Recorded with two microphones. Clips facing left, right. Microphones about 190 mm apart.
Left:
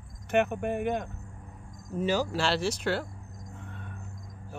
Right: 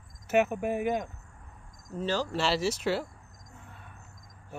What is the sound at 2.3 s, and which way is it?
Speech, 5° right (ahead or behind).